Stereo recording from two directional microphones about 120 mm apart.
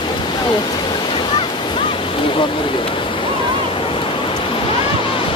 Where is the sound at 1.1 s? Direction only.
45° left (ahead or behind).